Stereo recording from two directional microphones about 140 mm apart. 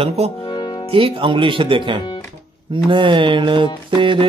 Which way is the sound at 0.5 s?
30° left (ahead or behind).